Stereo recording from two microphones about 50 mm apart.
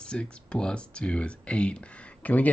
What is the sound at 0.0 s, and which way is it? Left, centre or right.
Speech, left.